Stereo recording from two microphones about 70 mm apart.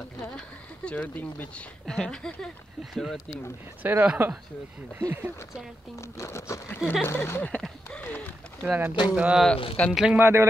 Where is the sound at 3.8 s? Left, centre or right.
Right.